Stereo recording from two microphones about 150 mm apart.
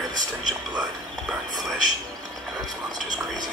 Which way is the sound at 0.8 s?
Centre (ahead or behind).